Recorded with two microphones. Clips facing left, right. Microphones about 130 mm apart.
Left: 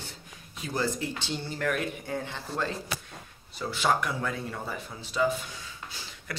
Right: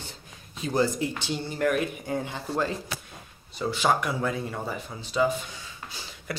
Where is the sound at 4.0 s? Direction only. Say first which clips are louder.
Right 3 dB; 20° right (ahead or behind).